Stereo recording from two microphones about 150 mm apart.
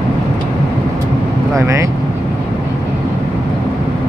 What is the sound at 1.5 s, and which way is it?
Speech, 20° right (ahead or behind).